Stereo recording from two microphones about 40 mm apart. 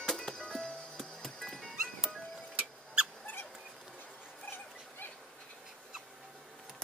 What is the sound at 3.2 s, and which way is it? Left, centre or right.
Rodents, left.